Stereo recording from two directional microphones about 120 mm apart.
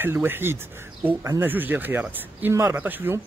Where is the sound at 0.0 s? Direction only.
20° right (ahead or behind).